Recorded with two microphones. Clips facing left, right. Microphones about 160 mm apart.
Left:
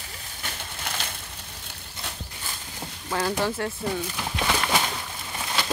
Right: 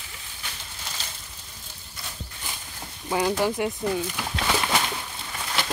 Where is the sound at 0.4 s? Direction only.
65° left (ahead or behind).